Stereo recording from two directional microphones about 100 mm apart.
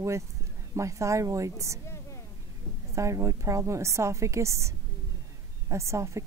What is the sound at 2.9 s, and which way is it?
A woman's voice, 30° right (ahead or behind).